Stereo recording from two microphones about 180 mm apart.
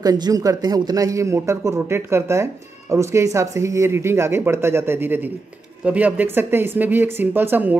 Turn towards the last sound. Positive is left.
turn(degrees=-10)  # may be behind; listen again after turning